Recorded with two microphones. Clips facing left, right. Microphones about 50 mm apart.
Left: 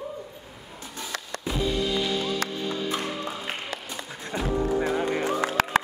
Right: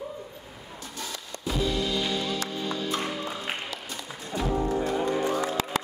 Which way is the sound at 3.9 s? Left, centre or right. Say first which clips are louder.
Left 2 dB; left.